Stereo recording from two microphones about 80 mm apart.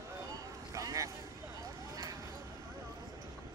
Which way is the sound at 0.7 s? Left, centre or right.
Right.